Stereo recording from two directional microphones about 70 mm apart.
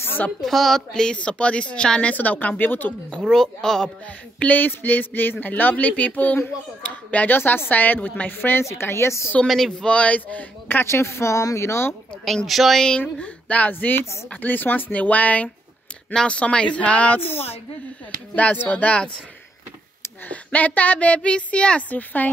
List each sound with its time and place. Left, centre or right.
0.4 s speech: centre; by 2.9 s left
3.1 s speech: centre
4.4 s a woman's voice: left
9.5 s speech: centre; by 11.9 s left
12.4 s a woman's voice: centre
13.2 s speech: centre
18.3 s speech: left
20.2 s speech: left